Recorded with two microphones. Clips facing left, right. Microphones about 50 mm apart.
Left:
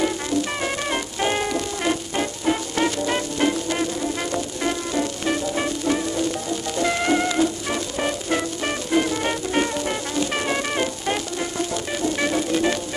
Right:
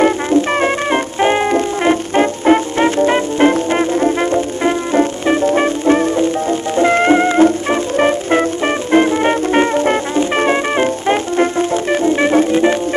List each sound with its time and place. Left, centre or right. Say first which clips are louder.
0.0 s music: right 10 dB; right